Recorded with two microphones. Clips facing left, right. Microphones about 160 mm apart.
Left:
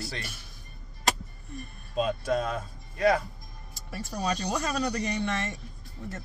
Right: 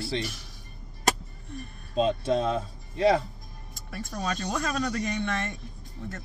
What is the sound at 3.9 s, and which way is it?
Speech, 5° left (ahead or behind).